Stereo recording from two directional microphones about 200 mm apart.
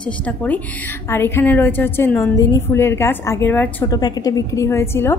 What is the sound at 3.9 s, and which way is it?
A woman's voice, 20° left (ahead or behind).